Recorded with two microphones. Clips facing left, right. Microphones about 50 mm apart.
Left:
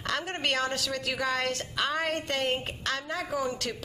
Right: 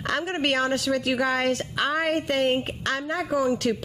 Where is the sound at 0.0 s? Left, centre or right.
Centre.